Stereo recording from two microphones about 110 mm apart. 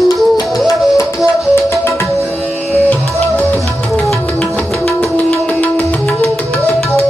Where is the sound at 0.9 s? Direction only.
25° left (ahead or behind).